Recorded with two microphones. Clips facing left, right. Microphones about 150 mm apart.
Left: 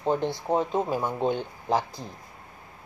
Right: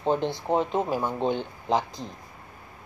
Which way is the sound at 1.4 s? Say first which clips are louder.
Right 1 dB; 10° left (ahead or behind).